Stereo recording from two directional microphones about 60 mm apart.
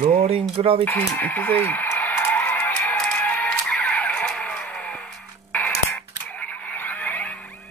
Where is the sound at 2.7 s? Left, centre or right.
Left.